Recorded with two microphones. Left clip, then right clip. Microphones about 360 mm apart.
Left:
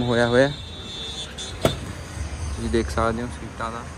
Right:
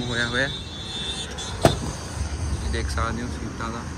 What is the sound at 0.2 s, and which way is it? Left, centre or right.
Speech, centre.